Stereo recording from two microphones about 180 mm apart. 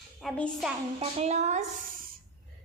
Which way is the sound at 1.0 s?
40° right (ahead or behind).